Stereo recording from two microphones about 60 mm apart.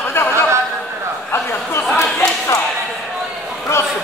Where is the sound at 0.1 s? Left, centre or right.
Left.